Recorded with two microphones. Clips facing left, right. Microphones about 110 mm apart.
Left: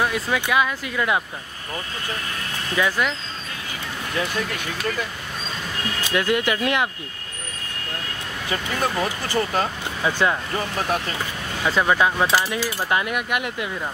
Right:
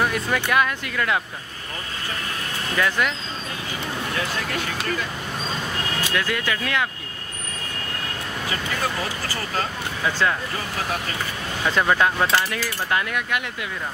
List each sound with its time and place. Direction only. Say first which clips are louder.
0.1 s speech: even; 10° left (ahead or behind)
2.7 s speech: left 1 dB; 5° left (ahead or behind)
6.0 s speech: left 6 dB; 15° left (ahead or behind)
9.0 s speech: left 5 dB; 25° left (ahead or behind)
11.6 s speech: left 1 dB; 5° left (ahead or behind)